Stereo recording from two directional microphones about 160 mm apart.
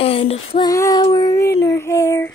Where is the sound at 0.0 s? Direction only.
35° left (ahead or behind).